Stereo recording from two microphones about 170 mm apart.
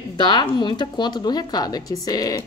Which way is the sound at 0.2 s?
25° left (ahead or behind).